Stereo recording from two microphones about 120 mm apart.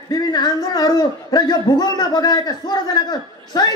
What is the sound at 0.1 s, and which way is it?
Speech, 35° left (ahead or behind).